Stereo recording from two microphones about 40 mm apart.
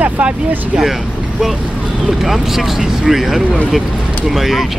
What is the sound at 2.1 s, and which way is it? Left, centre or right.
Speech, centre.